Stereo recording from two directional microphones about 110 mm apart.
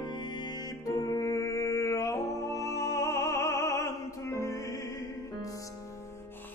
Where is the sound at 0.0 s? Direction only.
45° left (ahead or behind); by 5.5 s 25° left (ahead or behind).